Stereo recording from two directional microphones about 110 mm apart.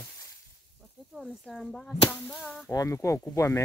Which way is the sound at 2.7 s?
30° left (ahead or behind).